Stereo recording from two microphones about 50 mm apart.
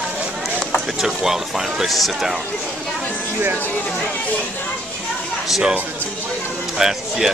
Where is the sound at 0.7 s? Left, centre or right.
Centre.